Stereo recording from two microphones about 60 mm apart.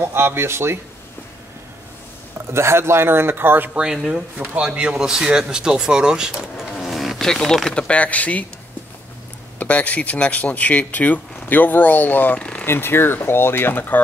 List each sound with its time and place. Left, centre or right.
0.0 s speech: right
2.5 s a man's voice: right
3.7 s a man's voice: centre
6.8 s a sound: centre
7.7 s speech: centre
9.6 s speech: left
12.4 s a sound: centre
12.6 s speech: left